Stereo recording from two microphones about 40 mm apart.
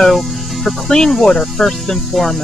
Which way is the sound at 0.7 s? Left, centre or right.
Centre.